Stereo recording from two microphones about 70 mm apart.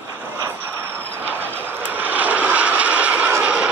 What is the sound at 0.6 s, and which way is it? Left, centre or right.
Vehicle, right.